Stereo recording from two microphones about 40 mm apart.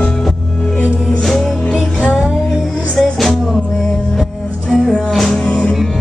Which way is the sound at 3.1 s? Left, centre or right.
Centre.